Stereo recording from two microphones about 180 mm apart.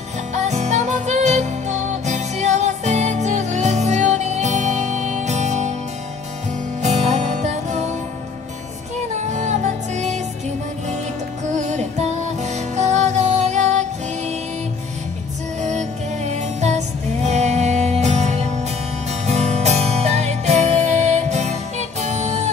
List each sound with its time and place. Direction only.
0.3 s music: 40° right (ahead or behind)
6.8 s music: 40° right (ahead or behind)
9.1 s music: 40° right (ahead or behind)
11.4 s music: 40° right (ahead or behind)
15.6 s music: 40° right (ahead or behind)